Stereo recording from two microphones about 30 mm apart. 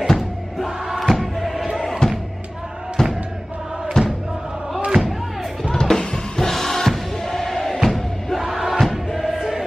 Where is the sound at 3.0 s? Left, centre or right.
Centre.